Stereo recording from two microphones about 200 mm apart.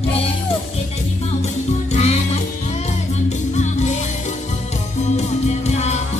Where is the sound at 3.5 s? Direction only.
35° left (ahead or behind).